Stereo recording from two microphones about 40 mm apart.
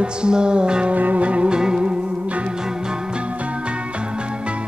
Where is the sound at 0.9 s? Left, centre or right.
Right.